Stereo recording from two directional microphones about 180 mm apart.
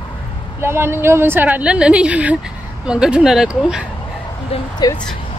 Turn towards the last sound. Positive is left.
turn(degrees=20)  # may be behind; listen again after turning